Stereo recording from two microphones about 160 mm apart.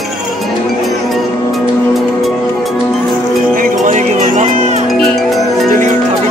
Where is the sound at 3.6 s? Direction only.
55° right (ahead or behind).